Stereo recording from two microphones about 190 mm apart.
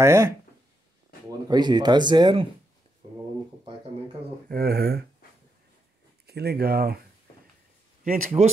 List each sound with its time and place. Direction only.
0.0 s speech: 15° right (ahead or behind)
1.5 s speech: 20° right (ahead or behind)
4.5 s speech: 55° right (ahead or behind)
6.2 s speech: 55° right (ahead or behind)
8.0 s speech: 50° right (ahead or behind)